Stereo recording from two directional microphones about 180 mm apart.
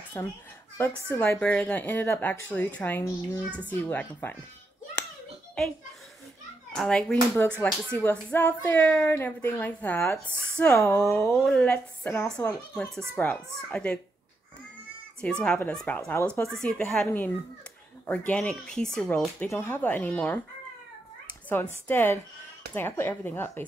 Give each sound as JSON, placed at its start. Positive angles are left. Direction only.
{"t": 0.2, "sound": "speech", "side_deg": 10}
{"t": 6.7, "sound": "speech", "side_deg": 5}
{"t": 11.4, "sound": "speech", "side_deg": 5}
{"t": 15.2, "sound": "speech", "side_deg": 5}
{"t": 21.5, "sound": "speech", "side_deg": 10}